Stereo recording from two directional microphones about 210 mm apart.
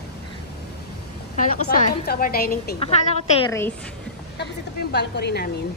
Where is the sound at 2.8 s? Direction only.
30° left (ahead or behind).